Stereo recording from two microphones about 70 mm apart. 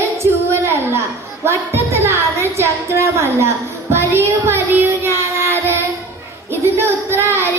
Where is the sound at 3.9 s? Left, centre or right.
Right.